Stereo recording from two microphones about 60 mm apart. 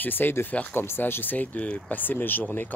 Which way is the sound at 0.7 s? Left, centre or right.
Left.